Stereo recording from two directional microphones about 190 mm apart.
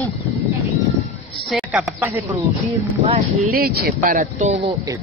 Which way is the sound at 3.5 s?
55° right (ahead or behind).